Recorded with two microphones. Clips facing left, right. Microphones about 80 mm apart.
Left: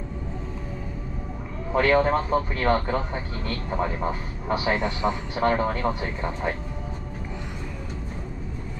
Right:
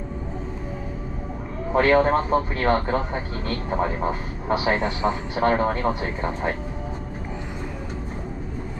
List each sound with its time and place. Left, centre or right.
1.8 s a man's voice: right